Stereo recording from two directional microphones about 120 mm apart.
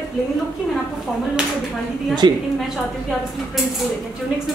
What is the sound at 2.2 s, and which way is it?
Speech, 40° right (ahead or behind).